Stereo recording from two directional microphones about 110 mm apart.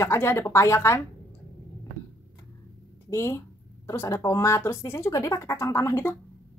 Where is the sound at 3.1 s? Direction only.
25° left (ahead or behind).